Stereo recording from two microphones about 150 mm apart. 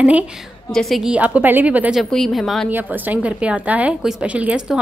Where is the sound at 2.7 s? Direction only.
10° right (ahead or behind).